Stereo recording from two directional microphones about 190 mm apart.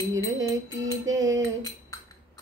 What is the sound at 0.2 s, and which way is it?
Music, 15° right (ahead or behind).